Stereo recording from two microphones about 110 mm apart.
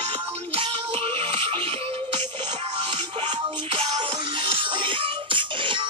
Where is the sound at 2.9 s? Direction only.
50° right (ahead or behind).